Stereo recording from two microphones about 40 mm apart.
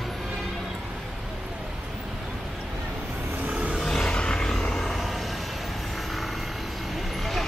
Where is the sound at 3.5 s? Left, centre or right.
Right.